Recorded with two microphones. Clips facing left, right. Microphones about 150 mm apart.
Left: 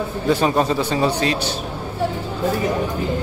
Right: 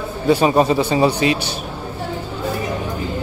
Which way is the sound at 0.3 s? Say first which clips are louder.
Right 4 dB; 10° right (ahead or behind).